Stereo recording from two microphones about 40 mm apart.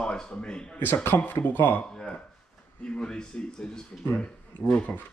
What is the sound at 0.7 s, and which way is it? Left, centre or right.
Speech, left.